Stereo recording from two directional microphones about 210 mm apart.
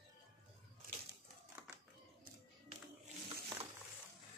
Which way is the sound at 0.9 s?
45° right (ahead or behind).